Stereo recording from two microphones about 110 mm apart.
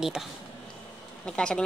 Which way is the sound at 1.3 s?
10° left (ahead or behind).